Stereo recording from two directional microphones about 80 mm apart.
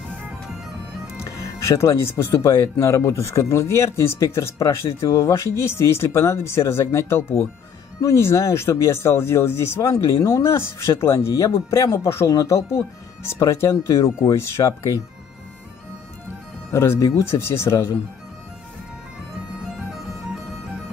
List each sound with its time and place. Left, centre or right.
1.2 s speech: left
16.7 s speech: left
19.6 s bagpipes: centre